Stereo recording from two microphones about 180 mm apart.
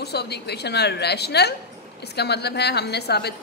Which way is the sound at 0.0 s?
65° left (ahead or behind).